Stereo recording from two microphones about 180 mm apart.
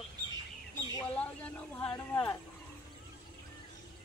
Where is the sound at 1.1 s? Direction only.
5° left (ahead or behind).